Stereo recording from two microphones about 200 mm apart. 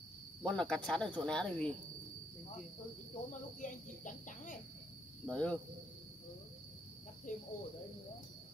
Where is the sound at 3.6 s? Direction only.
40° left (ahead or behind).